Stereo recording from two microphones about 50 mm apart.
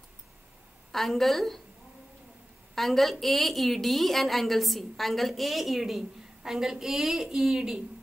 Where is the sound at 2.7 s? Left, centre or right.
Centre.